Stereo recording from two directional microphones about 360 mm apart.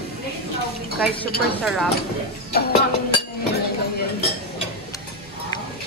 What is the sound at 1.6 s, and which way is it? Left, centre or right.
Speech, centre.